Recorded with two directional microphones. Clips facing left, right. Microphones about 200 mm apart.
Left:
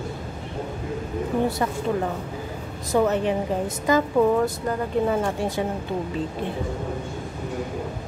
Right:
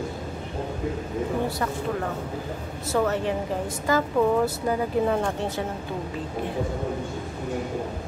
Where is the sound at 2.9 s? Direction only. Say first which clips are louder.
Left 3 dB; 20° left (ahead or behind).